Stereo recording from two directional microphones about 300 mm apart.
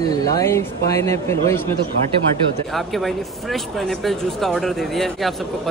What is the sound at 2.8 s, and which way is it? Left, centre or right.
Speech, centre.